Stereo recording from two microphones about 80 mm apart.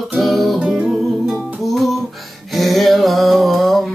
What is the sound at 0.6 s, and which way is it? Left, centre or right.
Music, centre.